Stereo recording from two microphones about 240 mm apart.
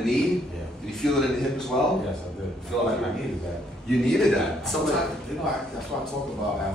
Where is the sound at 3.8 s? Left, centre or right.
Centre.